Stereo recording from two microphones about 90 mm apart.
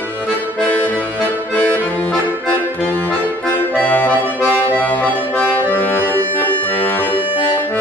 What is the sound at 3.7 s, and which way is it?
Accordion, 15° left (ahead or behind).